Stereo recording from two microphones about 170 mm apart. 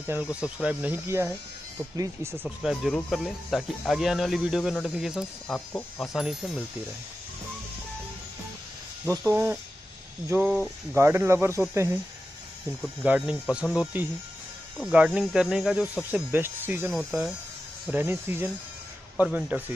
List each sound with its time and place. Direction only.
0.0 s speech: 10° right (ahead or behind)
2.4 s speech: centre (ahead or behind)
9.2 s speech: 15° right (ahead or behind)
13.0 s speech: 5° right (ahead or behind)
16.9 s speech: 5° right (ahead or behind)